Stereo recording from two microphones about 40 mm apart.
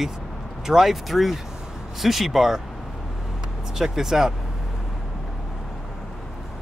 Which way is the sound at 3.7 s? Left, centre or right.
Centre.